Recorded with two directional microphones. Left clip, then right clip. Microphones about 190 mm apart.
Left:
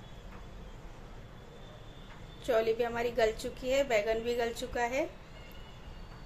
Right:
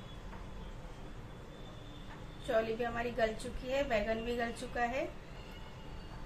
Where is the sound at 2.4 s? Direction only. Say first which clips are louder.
Left 4 dB; 55° left (ahead or behind).